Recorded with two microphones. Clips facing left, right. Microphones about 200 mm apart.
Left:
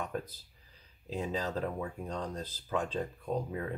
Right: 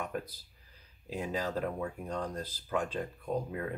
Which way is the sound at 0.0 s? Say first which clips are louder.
Even; 10° right (ahead or behind).